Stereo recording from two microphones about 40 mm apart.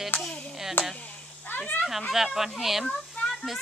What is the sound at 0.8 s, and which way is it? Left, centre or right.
Speech, left.